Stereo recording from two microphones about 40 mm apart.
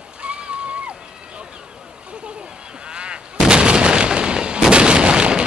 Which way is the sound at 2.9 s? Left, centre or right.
Right.